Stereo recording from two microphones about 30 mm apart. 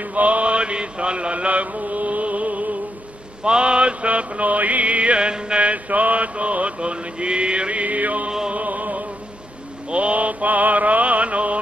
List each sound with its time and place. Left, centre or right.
0.0 s mantra: right
3.4 s mantra: right
5.6 s mantra: right
8.6 s music: right
9.8 s mantra: right